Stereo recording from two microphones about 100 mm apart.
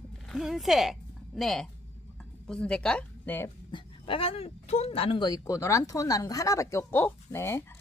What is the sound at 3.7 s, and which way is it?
Speech, 60° left (ahead or behind).